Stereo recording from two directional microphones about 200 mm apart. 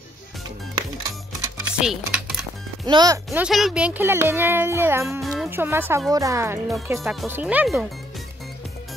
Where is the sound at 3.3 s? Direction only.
Centre (ahead or behind).